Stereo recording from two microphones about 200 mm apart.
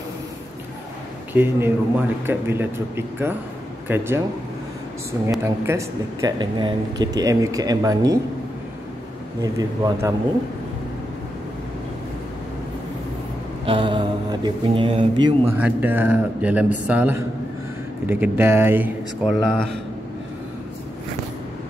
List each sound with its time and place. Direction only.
1.3 s speech: 10° right (ahead or behind)
5.4 s speech: 15° right (ahead or behind)
9.4 s speech: 20° right (ahead or behind)
13.7 s mantra: 25° right (ahead or behind)
15.4 s speech: 10° right (ahead or behind)